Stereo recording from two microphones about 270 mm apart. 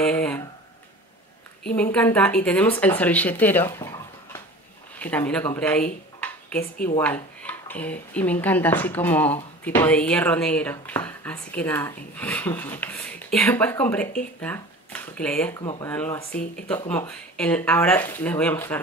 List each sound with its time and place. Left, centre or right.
0.0 s speech: centre
1.8 s speech: centre
7.0 s speech: centre
15.6 s speech: centre